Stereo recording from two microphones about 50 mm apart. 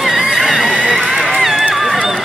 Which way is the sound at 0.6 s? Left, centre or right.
Right.